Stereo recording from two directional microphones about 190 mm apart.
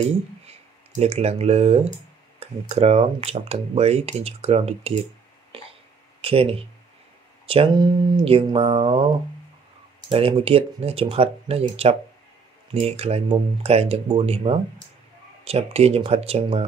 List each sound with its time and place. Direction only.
0.5 s speech: 35° right (ahead or behind)
5.5 s a sound: 30° right (ahead or behind)
6.2 s speech: 30° right (ahead or behind)